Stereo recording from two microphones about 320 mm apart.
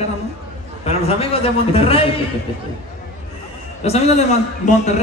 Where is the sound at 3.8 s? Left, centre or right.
Centre.